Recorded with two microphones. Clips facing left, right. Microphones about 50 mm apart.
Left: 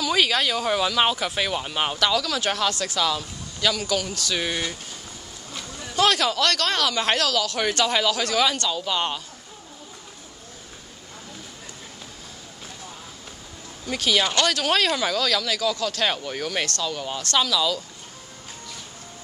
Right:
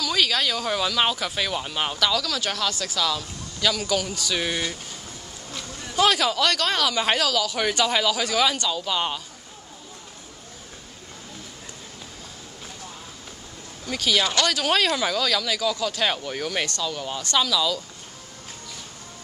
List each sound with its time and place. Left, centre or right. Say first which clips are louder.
0.0 s speech: left 2 dB; centre
3.8 s speech: even; centre
13.8 s speech: left 1 dB; centre